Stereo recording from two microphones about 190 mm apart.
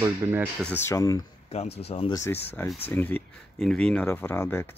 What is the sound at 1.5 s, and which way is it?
Speech, 35° left (ahead or behind).